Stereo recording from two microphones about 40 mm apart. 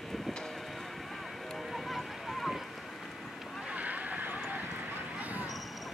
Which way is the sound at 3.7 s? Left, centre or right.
Right.